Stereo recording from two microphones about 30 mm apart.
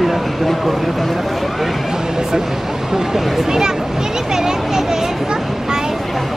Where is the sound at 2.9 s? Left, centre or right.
Centre.